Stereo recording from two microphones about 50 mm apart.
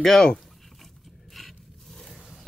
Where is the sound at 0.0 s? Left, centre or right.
Centre.